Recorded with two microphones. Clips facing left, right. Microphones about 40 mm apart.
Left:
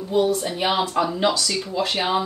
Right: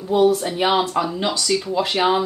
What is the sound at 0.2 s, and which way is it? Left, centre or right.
Speech, centre.